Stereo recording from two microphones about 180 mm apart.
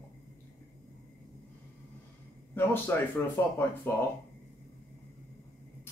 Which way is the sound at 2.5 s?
10° left (ahead or behind).